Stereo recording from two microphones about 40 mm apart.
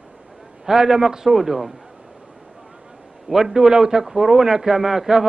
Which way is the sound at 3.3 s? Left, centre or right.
Centre.